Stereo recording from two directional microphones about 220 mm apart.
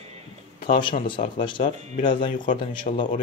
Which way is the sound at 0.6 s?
25° left (ahead or behind).